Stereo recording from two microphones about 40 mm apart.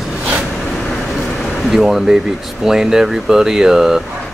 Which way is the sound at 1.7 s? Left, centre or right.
Centre.